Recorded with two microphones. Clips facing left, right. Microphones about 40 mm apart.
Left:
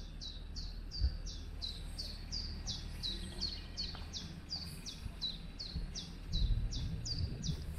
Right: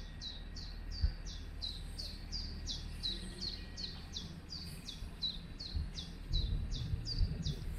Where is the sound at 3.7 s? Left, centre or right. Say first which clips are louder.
Left 1 dB; right.